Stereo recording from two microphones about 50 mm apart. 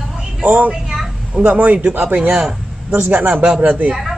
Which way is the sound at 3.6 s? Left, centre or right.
Right.